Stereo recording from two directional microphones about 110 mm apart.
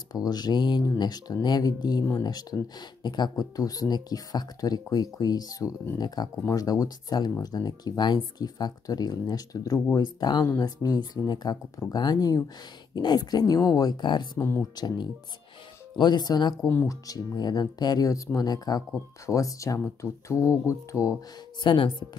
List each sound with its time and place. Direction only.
0.1 s speech: 35° left (ahead or behind)
16.6 s speech: 20° left (ahead or behind)
17.1 s speech: 35° left (ahead or behind)
21.6 s speech: 45° left (ahead or behind)